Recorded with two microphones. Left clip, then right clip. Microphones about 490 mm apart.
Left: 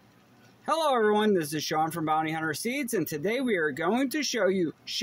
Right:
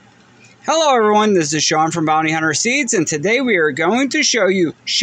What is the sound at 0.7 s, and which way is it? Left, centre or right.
Speech, left.